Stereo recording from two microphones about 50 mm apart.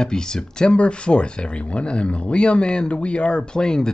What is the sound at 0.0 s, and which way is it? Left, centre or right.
Speech, centre.